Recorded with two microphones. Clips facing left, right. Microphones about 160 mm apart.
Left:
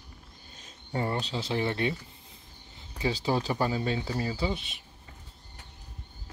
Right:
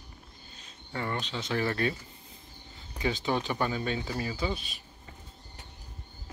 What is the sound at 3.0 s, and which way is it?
Speech, 30° left (ahead or behind).